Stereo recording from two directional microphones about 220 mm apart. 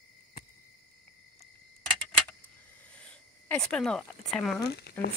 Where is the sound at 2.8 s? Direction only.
5° left (ahead or behind).